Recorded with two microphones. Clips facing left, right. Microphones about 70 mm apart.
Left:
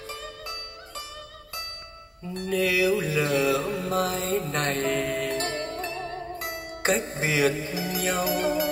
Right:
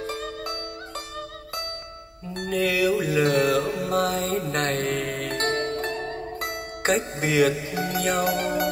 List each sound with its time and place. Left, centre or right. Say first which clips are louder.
0.0 s music: right 7 dB; right
2.3 s music: right 1 dB; right
3.6 s mantra: right 2 dB; right
4.0 s music: right 2 dB; right
6.8 s music: right 2 dB; right
7.7 s music: right 3 dB; right